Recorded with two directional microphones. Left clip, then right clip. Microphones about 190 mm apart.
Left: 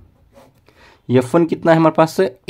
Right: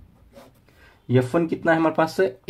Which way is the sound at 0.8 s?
45° left (ahead or behind).